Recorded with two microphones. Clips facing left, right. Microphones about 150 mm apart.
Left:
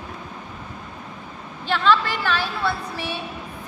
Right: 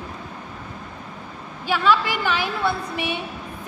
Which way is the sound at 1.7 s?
10° right (ahead or behind).